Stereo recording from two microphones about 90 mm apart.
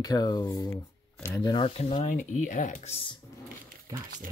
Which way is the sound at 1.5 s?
75° left (ahead or behind).